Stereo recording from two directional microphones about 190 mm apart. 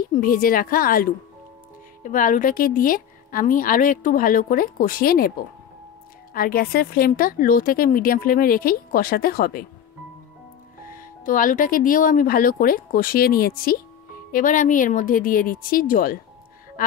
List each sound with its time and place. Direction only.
0.1 s a woman's voice: 50° left (ahead or behind)
2.0 s a woman's voice: 45° left (ahead or behind)
6.3 s a woman's voice: 50° left (ahead or behind)
10.9 s a woman's voice: 45° left (ahead or behind)